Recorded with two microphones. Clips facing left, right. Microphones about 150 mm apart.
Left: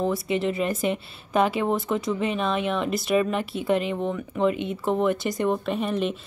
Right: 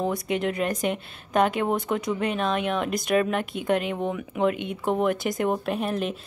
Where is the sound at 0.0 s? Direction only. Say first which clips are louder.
Left 1 dB; centre (ahead or behind).